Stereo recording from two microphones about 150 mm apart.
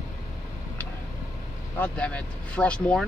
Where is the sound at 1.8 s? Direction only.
10° left (ahead or behind).